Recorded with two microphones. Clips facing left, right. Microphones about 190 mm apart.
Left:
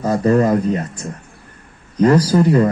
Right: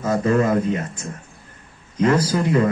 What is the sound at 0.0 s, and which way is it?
Speech, 35° left (ahead or behind).